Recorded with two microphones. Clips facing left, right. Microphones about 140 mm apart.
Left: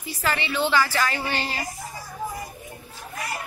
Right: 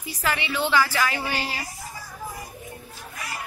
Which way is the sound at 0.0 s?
10° right (ahead or behind).